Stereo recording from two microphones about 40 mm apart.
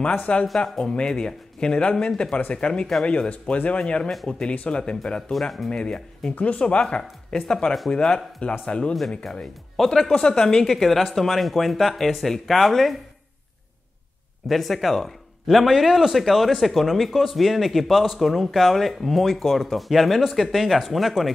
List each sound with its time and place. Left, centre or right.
0.1 s speech: left
0.7 s speech: centre
3.3 s speech: left; by 5.2 s centre
5.3 s speech: centre
5.7 s speech: left
6.3 s speech: left
7.0 s speech: centre
14.5 s speech: centre
15.4 s speech: centre